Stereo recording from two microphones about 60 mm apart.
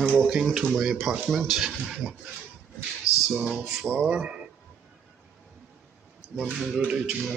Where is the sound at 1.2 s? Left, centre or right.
Centre.